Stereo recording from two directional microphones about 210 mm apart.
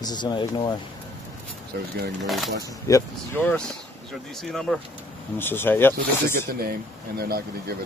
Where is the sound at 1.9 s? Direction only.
50° right (ahead or behind).